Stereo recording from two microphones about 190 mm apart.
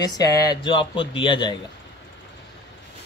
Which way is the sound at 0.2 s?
20° left (ahead or behind).